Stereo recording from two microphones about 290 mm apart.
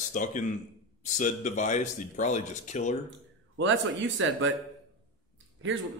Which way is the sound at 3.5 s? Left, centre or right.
Right.